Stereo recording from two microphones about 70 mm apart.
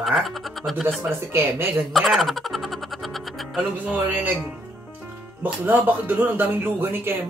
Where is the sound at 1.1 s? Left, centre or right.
Right.